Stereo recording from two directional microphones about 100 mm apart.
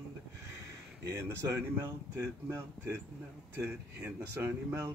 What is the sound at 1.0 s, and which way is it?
Speech, 30° right (ahead or behind).